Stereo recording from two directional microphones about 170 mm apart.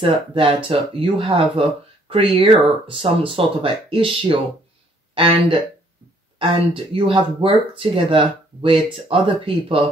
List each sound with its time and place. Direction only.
0.0 s speech: 30° right (ahead or behind)
6.7 s speech: 30° right (ahead or behind)